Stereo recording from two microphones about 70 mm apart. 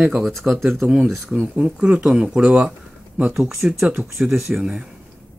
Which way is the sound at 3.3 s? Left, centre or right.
Centre.